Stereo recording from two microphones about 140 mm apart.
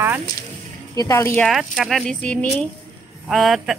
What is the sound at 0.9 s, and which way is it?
Speech, 25° left (ahead or behind).